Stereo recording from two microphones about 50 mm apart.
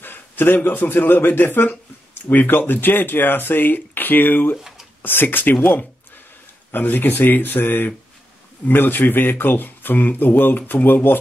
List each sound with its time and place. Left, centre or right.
0.0 s speech: left
4.6 s a sound: centre
5.0 s speech: left